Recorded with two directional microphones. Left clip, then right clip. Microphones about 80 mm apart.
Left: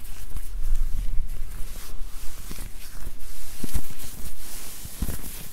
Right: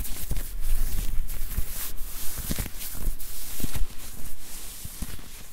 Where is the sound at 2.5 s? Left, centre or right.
Right.